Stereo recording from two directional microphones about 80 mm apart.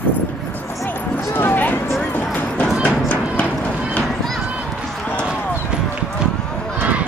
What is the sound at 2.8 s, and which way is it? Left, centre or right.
Music, centre.